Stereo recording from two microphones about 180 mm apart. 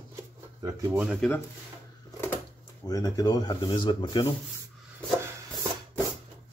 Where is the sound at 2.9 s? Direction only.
20° left (ahead or behind).